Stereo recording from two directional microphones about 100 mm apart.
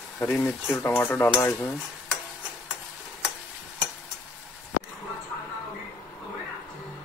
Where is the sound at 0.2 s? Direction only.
20° left (ahead or behind).